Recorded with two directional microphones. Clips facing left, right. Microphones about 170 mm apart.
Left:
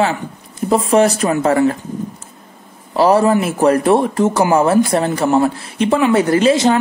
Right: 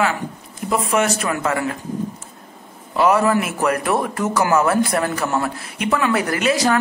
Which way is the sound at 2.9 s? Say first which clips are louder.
Left 4 dB; 30° left (ahead or behind).